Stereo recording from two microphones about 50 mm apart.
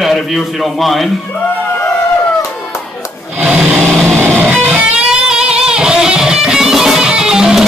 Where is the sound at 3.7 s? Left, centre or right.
Centre.